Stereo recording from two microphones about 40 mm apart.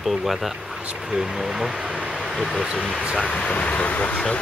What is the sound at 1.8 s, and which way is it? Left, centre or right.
Speech, right.